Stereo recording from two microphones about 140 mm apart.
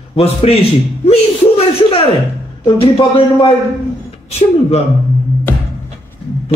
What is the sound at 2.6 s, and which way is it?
Speech, 40° left (ahead or behind).